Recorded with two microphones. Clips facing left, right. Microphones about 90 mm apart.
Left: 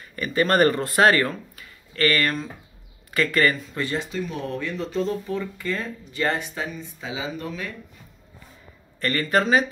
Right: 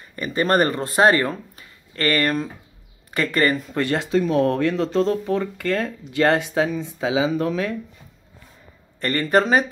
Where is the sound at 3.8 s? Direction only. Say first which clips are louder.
Right 7 dB; 75° right (ahead or behind); by 7.1 s 90° right.